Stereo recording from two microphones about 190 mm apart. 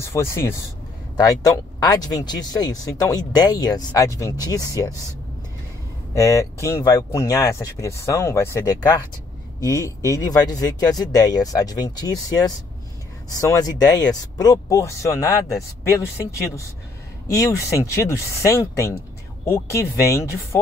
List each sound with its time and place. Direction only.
0.0 s speech: 15° left (ahead or behind)
6.1 s speech: 15° left (ahead or behind)
17.3 s speech: 15° left (ahead or behind)